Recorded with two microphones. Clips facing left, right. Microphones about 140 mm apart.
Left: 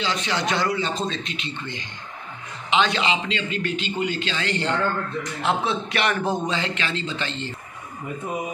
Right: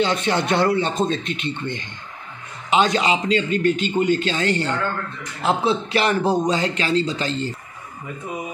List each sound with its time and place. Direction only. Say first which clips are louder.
0.0 s a man's voice: right 5 dB; 50° right (ahead or behind)
2.7 s a man's voice: right 3 dB; 40° right (ahead or behind)
5.4 s a man's voice: right 5 dB; 30° right (ahead or behind)